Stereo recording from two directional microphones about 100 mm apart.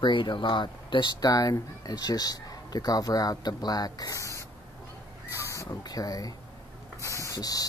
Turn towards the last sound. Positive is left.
turn(degrees=40)  # may be behind; listen again after turning